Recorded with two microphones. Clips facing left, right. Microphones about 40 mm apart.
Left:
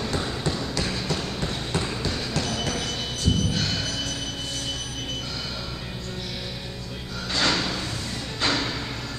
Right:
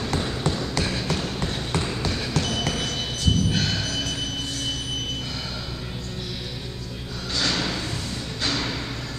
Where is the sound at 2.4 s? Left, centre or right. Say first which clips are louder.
Right 2 dB; centre.